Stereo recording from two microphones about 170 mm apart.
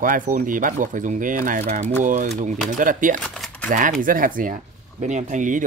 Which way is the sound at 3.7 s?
50° right (ahead or behind).